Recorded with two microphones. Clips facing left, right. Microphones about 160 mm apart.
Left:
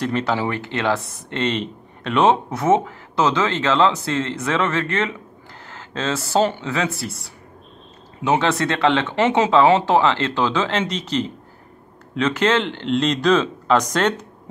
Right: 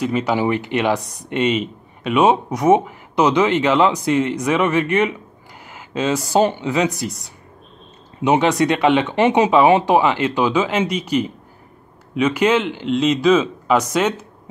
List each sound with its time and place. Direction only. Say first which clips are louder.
0.0 s speech: right 3 dB; 10° right (ahead or behind)